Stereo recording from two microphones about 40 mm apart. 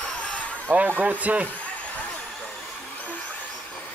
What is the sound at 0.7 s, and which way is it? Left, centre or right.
Speech, right.